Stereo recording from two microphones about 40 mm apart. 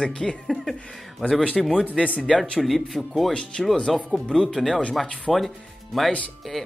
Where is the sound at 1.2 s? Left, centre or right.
Centre.